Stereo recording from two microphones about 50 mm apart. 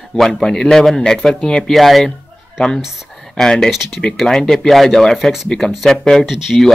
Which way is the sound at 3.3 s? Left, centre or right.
Centre.